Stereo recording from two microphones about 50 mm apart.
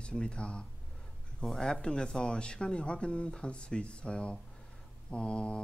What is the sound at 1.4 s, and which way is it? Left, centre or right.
Speech, centre.